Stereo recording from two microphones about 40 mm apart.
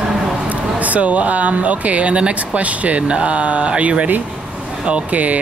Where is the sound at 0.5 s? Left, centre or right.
Right.